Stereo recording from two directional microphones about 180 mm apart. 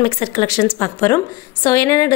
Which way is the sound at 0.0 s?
25° left (ahead or behind).